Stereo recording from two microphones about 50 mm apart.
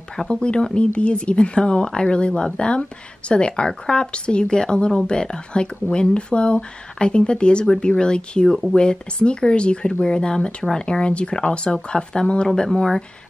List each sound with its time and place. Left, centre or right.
0.1 s speech: centre